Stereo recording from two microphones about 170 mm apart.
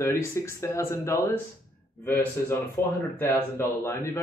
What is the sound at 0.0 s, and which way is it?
Speech, 15° left (ahead or behind).